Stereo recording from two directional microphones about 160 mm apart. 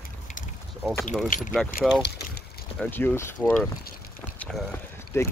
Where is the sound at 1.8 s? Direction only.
Centre (ahead or behind).